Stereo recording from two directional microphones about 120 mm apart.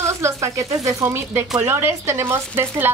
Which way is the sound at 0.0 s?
25° right (ahead or behind).